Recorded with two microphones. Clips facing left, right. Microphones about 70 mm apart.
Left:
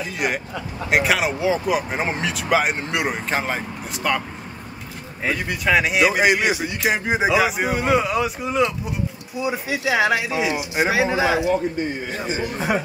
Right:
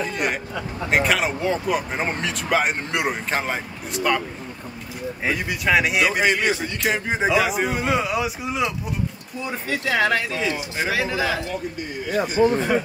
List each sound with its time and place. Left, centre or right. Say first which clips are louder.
0.0 s speech: even; centre
5.2 s speech: left 1 dB; centre
6.2 s speech: left 2 dB; centre
9.4 s speech: left 3 dB; centre
11.5 s speech: left 6 dB; left
12.5 s speech: right 1 dB; centre